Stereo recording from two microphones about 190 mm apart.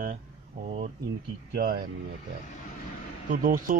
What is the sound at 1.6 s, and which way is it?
Speech, 50° right (ahead or behind).